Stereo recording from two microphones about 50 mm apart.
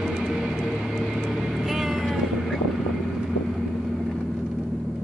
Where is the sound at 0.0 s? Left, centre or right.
Centre.